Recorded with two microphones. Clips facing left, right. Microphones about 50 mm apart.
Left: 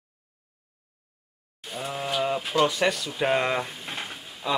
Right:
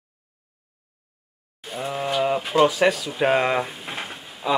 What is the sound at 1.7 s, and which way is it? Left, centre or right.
Speech, centre.